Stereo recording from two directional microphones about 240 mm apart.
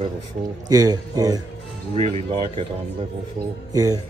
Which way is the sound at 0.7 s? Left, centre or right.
Centre.